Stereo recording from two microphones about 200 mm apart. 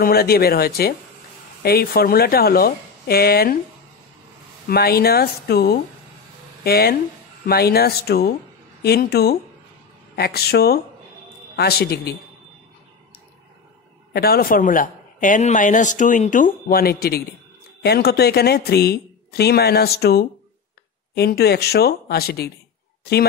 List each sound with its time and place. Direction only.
0.0 s speech: 50° left (ahead or behind)
4.6 s speech: 50° left (ahead or behind)
14.1 s a man's voice: 50° left (ahead or behind)